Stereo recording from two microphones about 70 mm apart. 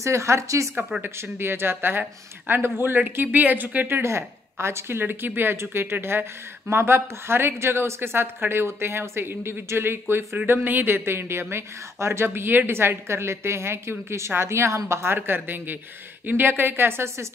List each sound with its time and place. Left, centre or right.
0.0 s speech: right
1.0 s a woman's voice: right
4.0 s a woman's voice: right